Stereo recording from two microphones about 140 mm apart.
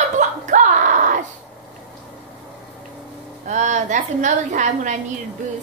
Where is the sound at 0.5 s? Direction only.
65° right (ahead or behind).